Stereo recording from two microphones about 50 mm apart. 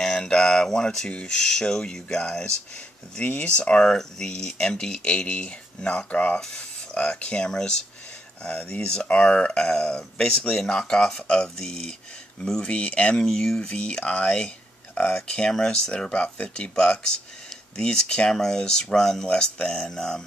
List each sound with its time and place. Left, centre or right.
0.0 s speech: centre
13.2 s speech: centre